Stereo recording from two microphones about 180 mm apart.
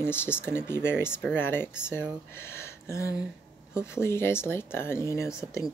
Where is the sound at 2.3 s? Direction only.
15° left (ahead or behind).